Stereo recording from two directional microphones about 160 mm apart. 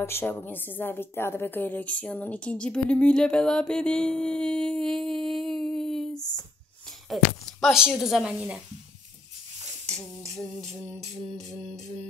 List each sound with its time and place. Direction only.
0.0 s a woman's voice: 15° left (ahead or behind)
7.6 s a woman's voice: 5° right (ahead or behind)
9.9 s a woman's voice: centre (ahead or behind)